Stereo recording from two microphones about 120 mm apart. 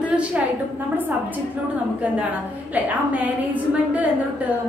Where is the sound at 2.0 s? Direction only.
15° right (ahead or behind).